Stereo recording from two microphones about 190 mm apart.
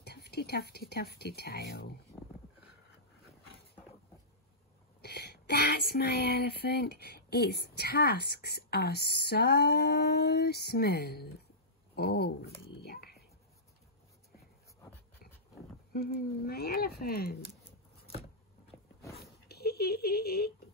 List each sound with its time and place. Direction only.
0.0 s speech: 60° left (ahead or behind)
5.0 s speech: 60° left (ahead or behind)
12.8 s a sound: 55° left (ahead or behind)
15.9 s speech: 55° left (ahead or behind)
19.4 s speech: 55° left (ahead or behind)